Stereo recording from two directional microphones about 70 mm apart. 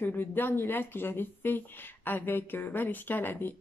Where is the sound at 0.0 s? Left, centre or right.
Left.